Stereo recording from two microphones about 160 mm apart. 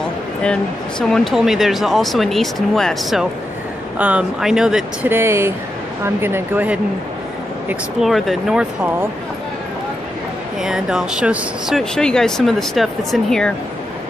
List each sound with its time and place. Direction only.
1.0 s speech: centre (ahead or behind)
5.1 s speech: 15° right (ahead or behind)
8.0 s speech: centre (ahead or behind)
10.6 s speech: 5° right (ahead or behind)